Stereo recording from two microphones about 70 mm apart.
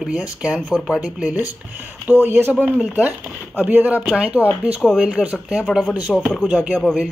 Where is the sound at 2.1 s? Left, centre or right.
Right.